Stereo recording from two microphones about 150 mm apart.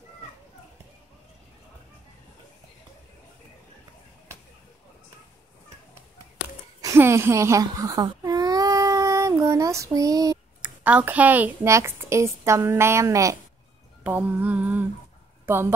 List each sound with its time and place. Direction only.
6.8 s baby cry: 20° right (ahead or behind)
10.8 s a woman's voice: 10° right (ahead or behind)
14.0 s a woman's voice: 10° right (ahead or behind)